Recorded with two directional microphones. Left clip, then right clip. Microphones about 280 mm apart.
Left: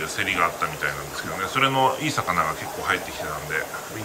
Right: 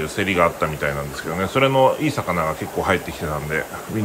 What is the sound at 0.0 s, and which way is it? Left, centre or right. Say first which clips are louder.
Speech: right 4 dB; centre.